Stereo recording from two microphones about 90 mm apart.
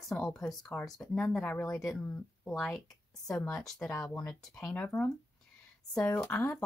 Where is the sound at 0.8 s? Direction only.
5° left (ahead or behind).